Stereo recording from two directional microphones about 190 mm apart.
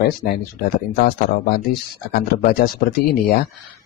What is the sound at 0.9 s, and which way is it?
Speech, 55° left (ahead or behind).